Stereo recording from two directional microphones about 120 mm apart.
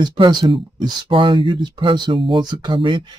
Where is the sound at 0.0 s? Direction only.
35° right (ahead or behind).